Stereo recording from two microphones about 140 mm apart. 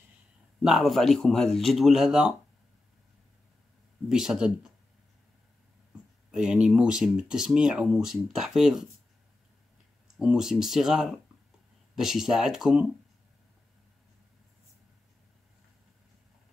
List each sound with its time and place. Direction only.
0.6 s speech: centre (ahead or behind)
4.1 s speech: 5° right (ahead or behind)
6.3 s speech: 5° right (ahead or behind)
10.1 s speech: 5° right (ahead or behind)